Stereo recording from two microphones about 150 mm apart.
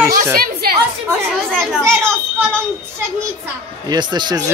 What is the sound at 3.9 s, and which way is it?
Speech, 30° right (ahead or behind).